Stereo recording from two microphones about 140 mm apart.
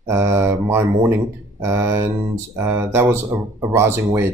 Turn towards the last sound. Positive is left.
turn(degrees=-15)  # may be behind; listen again after turning